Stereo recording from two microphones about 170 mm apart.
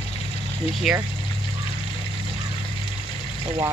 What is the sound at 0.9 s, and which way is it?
Speech, centre (ahead or behind).